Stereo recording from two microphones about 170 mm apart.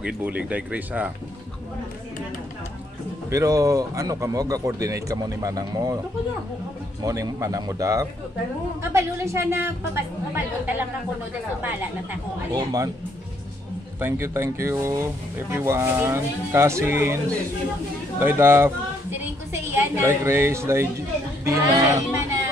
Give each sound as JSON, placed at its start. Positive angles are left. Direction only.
{"t": 0.0, "sound": "a woman's voice", "side_deg": -5}
{"t": 3.3, "sound": "a man's voice", "side_deg": -20}
{"t": 7.0, "sound": "a man's voice", "side_deg": -20}
{"t": 13.9, "sound": "a woman's voice", "side_deg": -15}
{"t": 18.2, "sound": "a woman's voice", "side_deg": -15}